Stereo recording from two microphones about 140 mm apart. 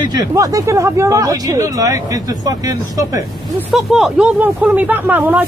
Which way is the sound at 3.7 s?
Centre (ahead or behind).